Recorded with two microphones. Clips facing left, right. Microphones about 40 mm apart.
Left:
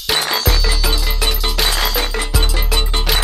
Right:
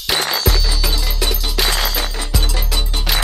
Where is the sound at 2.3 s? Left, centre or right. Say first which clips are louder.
Left 1 dB; centre.